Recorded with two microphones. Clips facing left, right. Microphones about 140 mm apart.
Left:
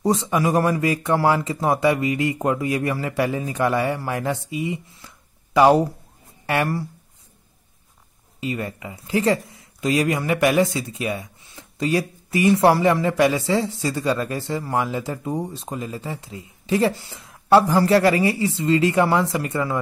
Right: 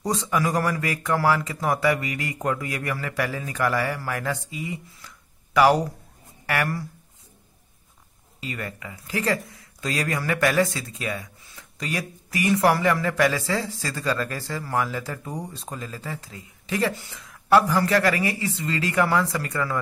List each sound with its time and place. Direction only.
0.0 s speech: 25° left (ahead or behind)
8.4 s speech: 20° left (ahead or behind)